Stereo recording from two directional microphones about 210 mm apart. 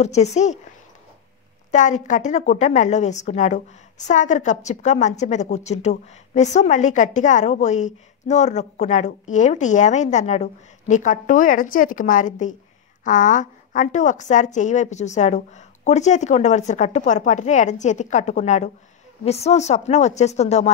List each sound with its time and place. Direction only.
0.0 s a woman's voice: 30° left (ahead or behind)
1.7 s a woman's voice: 35° left (ahead or behind)